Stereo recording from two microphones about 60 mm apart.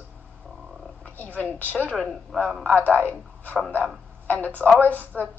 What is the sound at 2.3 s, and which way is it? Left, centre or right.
Speech, centre.